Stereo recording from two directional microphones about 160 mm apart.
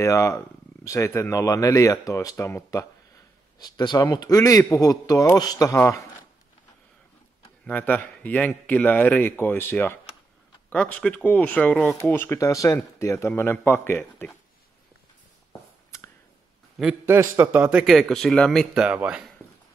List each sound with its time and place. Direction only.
0.0 s speech: 20° left (ahead or behind)
7.6 s speech: 10° left (ahead or behind)
17.0 s speech: 15° right (ahead or behind)